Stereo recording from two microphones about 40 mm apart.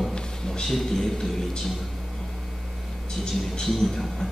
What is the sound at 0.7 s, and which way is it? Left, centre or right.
Speech, centre.